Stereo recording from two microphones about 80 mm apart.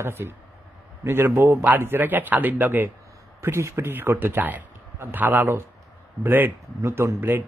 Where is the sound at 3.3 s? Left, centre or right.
Right.